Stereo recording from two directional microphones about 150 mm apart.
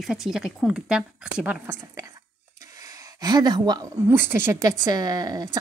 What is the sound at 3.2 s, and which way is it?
Speech, 25° right (ahead or behind).